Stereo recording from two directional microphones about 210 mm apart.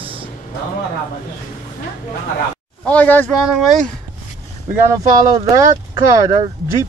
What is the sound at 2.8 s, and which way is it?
Speech, 5° left (ahead or behind).